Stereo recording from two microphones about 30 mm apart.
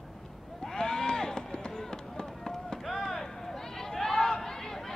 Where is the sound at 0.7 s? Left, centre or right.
Left.